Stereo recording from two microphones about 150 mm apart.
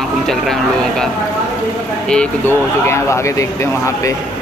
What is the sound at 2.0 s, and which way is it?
Speech, 5° left (ahead or behind).